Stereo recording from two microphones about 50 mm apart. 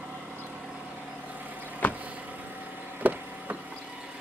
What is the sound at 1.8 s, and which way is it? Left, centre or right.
Vehicle, left.